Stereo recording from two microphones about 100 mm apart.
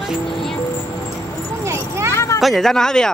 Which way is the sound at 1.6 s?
30° right (ahead or behind).